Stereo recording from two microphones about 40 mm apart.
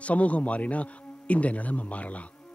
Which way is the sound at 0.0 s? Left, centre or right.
Left.